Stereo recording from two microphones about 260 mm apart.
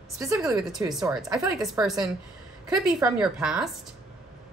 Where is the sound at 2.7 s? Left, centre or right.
Centre.